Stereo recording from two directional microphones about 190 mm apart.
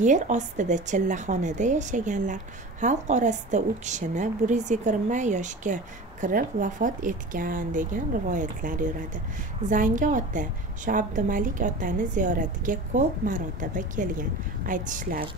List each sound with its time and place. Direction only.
0.0 s a woman's voice: 40° right (ahead or behind)